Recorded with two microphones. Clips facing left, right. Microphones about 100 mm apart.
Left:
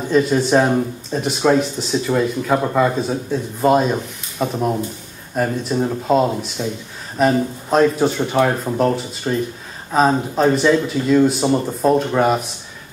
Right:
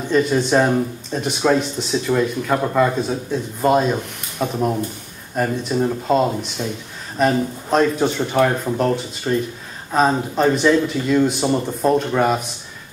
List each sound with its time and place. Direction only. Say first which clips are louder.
0.1 s speech: left 1 dB; centre (ahead or behind)